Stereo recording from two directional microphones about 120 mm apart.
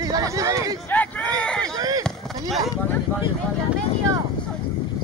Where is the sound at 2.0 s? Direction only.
Centre (ahead or behind).